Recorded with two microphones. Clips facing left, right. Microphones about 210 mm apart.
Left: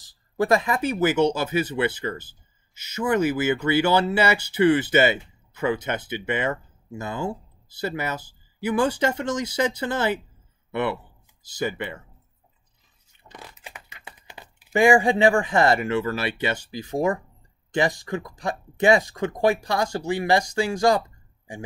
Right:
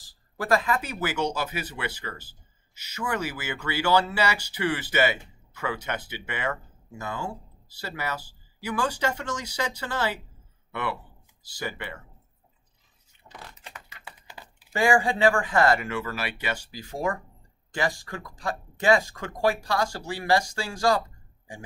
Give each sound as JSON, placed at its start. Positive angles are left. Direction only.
{"t": 0.4, "sound": "speech", "side_deg": 20}
{"t": 13.3, "sound": "a sound", "side_deg": 5}
{"t": 13.7, "sound": "speech", "side_deg": 20}